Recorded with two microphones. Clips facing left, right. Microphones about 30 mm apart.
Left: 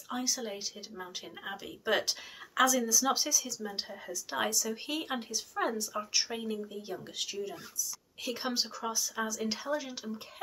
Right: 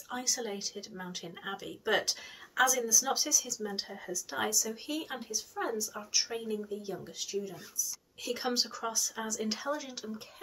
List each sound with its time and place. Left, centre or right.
0.1 s speech: centre; by 5.2 s left
5.3 s speech: left
5.9 s speech: left
7.2 s speech: left
8.4 s speech: centre